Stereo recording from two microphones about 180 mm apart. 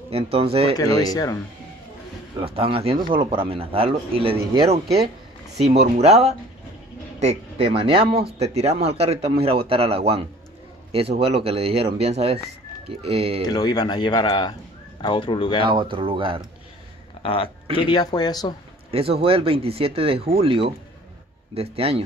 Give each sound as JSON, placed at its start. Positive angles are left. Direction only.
{"t": 0.1, "sound": "speech", "side_deg": -35}
{"t": 0.7, "sound": "speech", "side_deg": 20}
{"t": 2.3, "sound": "speech", "side_deg": -30}
{"t": 5.6, "sound": "speech", "side_deg": -35}
{"t": 13.5, "sound": "speech", "side_deg": 20}
{"t": 15.6, "sound": "speech", "side_deg": -30}
{"t": 17.2, "sound": "speech", "side_deg": 30}
{"t": 18.9, "sound": "speech", "side_deg": -30}